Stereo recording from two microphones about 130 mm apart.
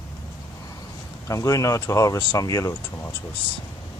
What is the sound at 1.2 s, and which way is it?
Speech, 25° left (ahead or behind).